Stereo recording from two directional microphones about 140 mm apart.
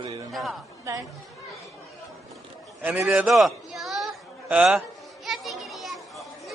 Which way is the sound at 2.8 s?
15° right (ahead or behind).